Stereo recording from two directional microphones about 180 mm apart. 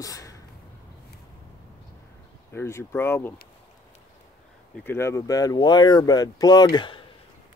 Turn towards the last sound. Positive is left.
turn(degrees=25)  # may be behind; listen again after turning